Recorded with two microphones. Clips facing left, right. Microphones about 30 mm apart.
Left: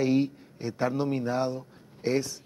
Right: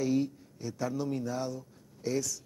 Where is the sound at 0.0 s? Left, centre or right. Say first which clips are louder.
Left 5 dB; left.